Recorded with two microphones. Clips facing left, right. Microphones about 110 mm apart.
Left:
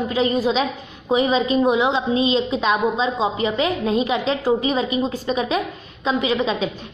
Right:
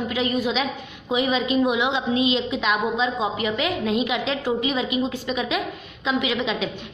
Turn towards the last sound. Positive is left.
turn(degrees=35)  # may be behind; listen again after turning